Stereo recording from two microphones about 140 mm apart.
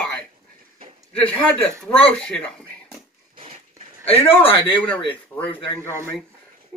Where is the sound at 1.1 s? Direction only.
10° left (ahead or behind).